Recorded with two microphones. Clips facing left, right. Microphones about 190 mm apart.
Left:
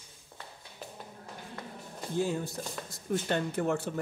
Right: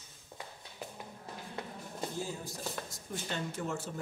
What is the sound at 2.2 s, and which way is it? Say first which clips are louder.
Speech: left 7 dB; 70° left (ahead or behind).